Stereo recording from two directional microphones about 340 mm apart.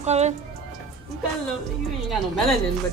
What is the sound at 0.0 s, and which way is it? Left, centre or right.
Speech, centre.